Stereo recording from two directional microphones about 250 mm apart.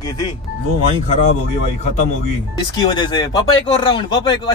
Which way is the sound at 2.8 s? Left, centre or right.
Centre.